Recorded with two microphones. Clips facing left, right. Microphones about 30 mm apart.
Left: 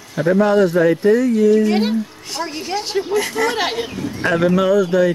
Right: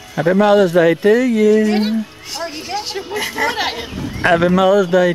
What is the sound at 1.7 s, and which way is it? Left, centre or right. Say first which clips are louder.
Speech: right 1 dB; centre.